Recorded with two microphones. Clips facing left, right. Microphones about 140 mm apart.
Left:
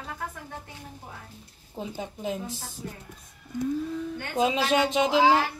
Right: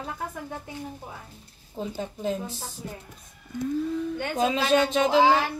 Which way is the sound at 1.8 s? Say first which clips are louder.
Right 3 dB; 10° left (ahead or behind).